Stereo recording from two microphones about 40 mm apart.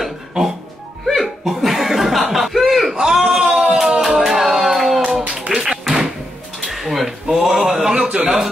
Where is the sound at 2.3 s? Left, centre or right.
Centre.